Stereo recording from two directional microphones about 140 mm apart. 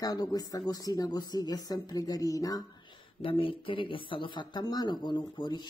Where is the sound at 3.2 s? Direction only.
40° left (ahead or behind).